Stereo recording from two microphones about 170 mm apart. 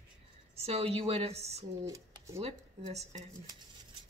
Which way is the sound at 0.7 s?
35° right (ahead or behind).